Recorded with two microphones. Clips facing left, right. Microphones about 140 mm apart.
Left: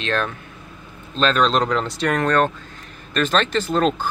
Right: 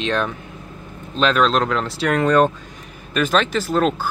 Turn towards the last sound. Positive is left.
turn(degrees=-5)  # may be behind; listen again after turning